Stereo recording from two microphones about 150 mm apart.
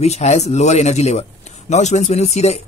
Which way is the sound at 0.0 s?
45° left (ahead or behind).